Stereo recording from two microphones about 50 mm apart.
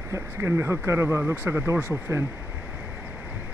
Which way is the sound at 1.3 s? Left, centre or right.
Right.